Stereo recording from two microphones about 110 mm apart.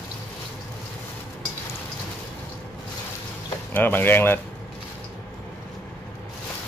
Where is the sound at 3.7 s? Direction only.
20° left (ahead or behind).